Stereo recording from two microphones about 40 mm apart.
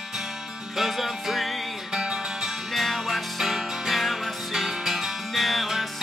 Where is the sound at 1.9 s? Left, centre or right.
Centre.